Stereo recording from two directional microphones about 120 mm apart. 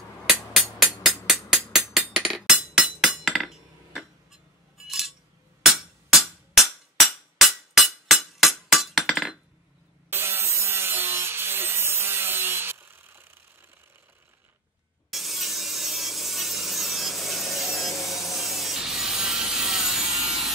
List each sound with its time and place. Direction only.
0.3 s music: centre (ahead or behind)
4.8 s a sound: centre (ahead or behind)
7.3 s music: centre (ahead or behind)
10.0 s wood: 20° right (ahead or behind)
15.0 s wood: centre (ahead or behind)